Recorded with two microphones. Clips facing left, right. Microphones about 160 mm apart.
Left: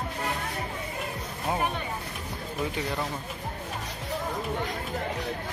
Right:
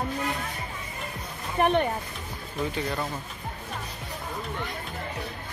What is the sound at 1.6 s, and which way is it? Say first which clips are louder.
Speech: right 8 dB; 65° right (ahead or behind).